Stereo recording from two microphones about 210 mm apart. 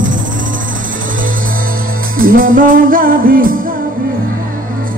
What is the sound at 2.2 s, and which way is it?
Music, 40° right (ahead or behind).